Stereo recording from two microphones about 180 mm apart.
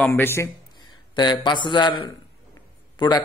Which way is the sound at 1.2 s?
25° left (ahead or behind).